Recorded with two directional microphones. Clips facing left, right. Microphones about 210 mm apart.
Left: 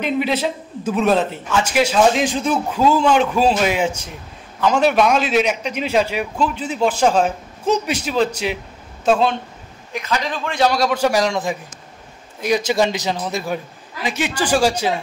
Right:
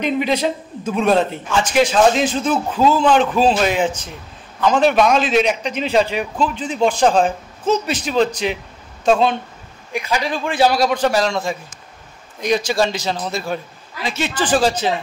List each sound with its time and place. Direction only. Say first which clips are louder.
0.0 s a man's voice: right 1 dB; 5° left (ahead or behind)
9.9 s a man's voice: right 2 dB; 10° right (ahead or behind)
11.0 s a man's voice: even; 15° left (ahead or behind)
12.6 s a man's voice: left 1 dB; 20° left (ahead or behind)